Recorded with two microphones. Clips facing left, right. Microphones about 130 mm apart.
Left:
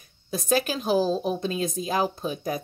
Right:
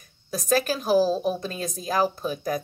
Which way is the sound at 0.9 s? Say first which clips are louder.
Right 2 dB; 5° right (ahead or behind).